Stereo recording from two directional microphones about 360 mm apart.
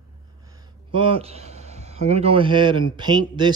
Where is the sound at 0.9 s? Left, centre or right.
Centre.